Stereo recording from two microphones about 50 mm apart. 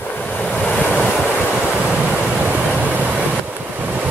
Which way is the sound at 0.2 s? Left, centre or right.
Centre.